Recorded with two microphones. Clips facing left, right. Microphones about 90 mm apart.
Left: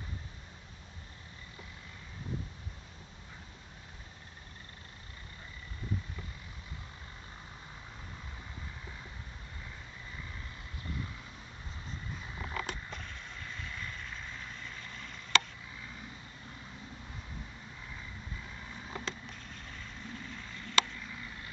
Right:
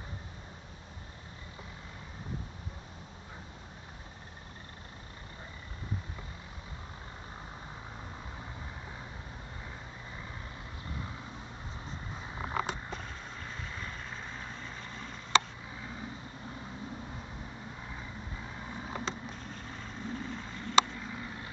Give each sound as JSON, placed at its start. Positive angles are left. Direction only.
{"t": 12.4, "sound": "a sound", "side_deg": -30}
{"t": 13.4, "sound": "vehicle", "side_deg": -30}
{"t": 18.7, "sound": "vehicle", "side_deg": -25}